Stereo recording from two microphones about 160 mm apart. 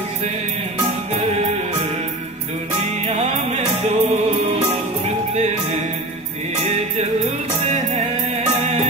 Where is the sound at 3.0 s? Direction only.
40° right (ahead or behind).